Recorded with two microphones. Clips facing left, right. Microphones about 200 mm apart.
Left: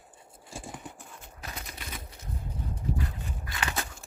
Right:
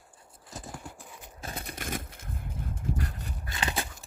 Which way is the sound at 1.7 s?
50° right (ahead or behind).